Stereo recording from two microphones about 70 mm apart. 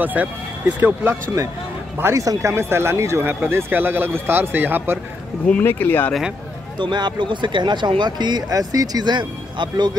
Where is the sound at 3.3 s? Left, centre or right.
Right.